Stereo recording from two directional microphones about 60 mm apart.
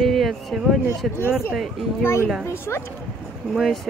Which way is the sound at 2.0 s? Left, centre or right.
Left.